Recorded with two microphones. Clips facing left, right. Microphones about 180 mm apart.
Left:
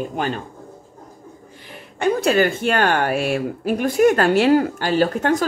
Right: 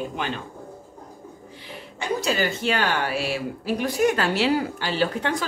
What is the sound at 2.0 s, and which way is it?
Speech, 55° left (ahead or behind).